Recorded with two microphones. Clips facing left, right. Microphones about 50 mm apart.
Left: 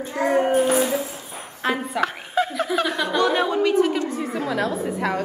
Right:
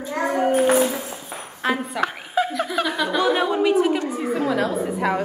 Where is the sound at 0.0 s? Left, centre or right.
Left.